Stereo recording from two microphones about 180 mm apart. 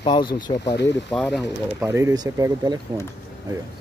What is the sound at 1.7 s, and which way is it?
Speech, 10° right (ahead or behind).